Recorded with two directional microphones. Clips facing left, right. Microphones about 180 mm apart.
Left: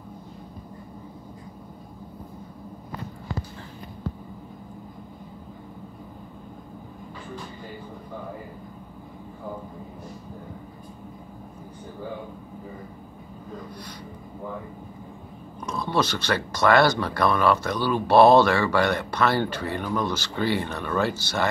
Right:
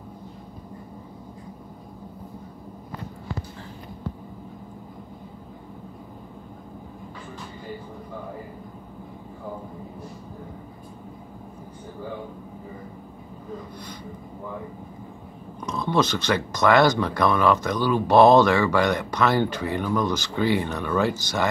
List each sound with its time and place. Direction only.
15.8 s speech: 20° right (ahead or behind)